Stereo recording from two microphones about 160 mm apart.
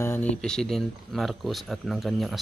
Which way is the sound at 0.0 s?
10° left (ahead or behind).